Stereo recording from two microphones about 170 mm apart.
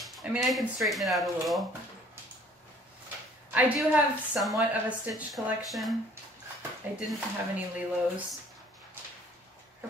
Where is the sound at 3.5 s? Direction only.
10° right (ahead or behind).